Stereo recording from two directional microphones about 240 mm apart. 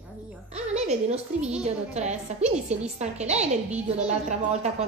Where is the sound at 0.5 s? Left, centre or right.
Right.